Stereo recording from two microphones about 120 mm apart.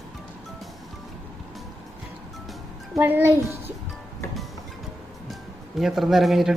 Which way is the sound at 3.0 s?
15° right (ahead or behind).